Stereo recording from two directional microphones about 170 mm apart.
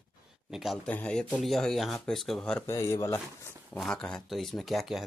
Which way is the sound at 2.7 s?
15° left (ahead or behind).